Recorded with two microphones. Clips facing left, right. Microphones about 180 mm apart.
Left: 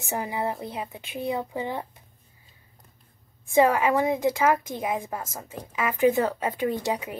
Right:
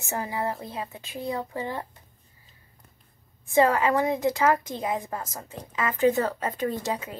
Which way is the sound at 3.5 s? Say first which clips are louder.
Left 1 dB; 10° left (ahead or behind).